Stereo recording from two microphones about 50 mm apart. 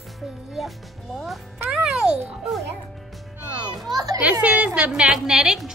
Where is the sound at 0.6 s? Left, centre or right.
Centre.